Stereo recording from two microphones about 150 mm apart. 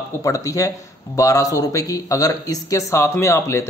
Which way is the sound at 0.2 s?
20° left (ahead or behind).